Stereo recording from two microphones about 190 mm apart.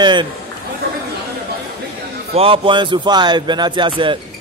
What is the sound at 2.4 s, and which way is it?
A man's voice, 30° right (ahead or behind).